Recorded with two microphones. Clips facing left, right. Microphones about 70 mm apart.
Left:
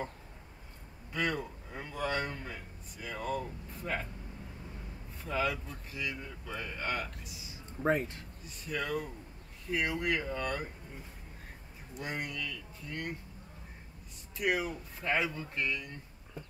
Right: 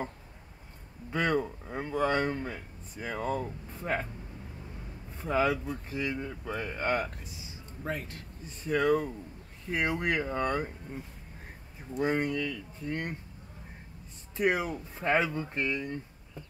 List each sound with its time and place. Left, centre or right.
1.1 s speech: right
5.2 s speech: right
7.8 s speech: left
8.5 s speech: right
12.0 s speech: right
14.3 s speech: right